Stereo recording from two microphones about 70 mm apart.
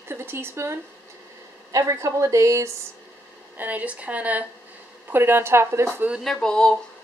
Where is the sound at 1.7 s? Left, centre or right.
Right.